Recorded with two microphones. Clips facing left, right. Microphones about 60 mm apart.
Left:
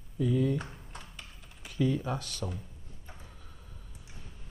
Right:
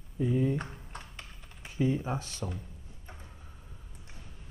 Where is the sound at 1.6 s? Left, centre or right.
Right.